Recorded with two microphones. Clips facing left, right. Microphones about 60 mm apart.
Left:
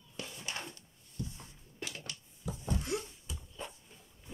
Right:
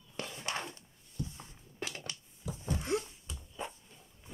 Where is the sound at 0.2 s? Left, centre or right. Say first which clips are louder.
Right 4 dB; right.